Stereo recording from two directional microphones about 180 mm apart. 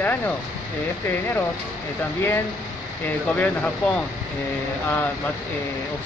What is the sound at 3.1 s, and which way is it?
Speech, 10° left (ahead or behind).